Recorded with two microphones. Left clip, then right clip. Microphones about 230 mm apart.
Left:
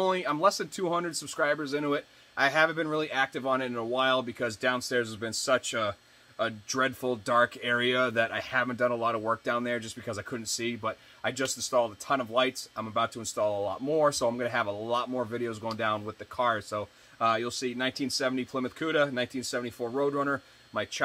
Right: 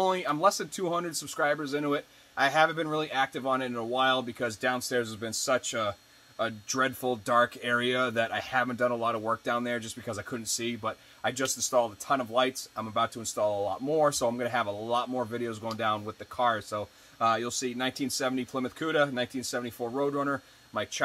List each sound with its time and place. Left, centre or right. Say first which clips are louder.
0.0 s speech: even; centre